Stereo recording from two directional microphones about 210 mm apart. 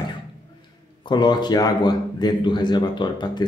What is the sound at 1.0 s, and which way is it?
Speech, 20° left (ahead or behind).